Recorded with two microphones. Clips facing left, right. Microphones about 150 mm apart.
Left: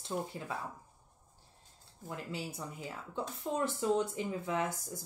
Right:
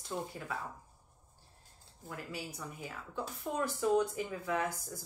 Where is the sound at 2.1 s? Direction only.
25° left (ahead or behind).